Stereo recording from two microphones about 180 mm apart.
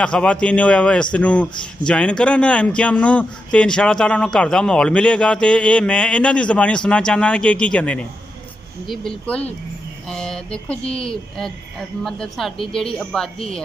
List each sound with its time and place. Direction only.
0.0 s a man's voice: 5° left (ahead or behind)
10.8 s a woman's voice: 35° left (ahead or behind)
11.1 s a man's voice: centre (ahead or behind)